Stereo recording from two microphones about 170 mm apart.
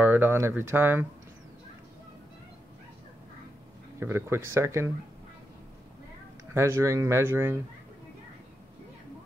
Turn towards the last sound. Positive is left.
turn(degrees=-15)  # may be behind; listen again after turning